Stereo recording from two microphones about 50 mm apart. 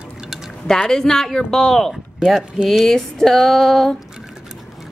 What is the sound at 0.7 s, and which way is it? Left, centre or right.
Speech, centre.